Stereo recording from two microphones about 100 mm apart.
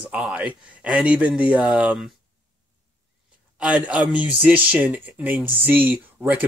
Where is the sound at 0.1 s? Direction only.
15° right (ahead or behind).